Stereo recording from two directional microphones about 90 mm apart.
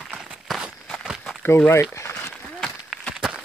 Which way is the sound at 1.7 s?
30° left (ahead or behind).